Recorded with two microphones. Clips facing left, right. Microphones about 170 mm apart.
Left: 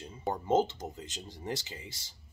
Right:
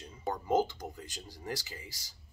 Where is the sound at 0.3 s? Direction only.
25° left (ahead or behind).